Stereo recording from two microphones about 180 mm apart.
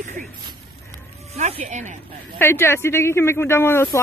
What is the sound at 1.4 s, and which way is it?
Speech, 40° right (ahead or behind).